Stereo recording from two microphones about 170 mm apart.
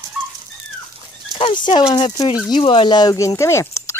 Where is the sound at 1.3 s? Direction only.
25° left (ahead or behind).